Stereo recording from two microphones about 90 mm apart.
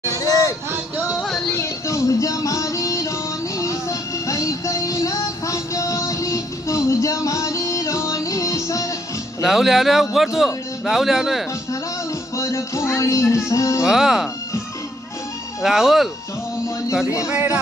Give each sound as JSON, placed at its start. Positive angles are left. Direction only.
{"t": 0.0, "sound": "a sound", "side_deg": 40}
{"t": 0.7, "sound": "music", "side_deg": -20}
{"t": 1.1, "sound": "music", "side_deg": 0}
{"t": 1.5, "sound": "music", "side_deg": 30}
{"t": 9.4, "sound": "a man's voice", "side_deg": 0}
{"t": 12.4, "sound": "music", "side_deg": 35}
{"t": 13.8, "sound": "a man's voice", "side_deg": -5}
{"t": 15.6, "sound": "a man's voice", "side_deg": -5}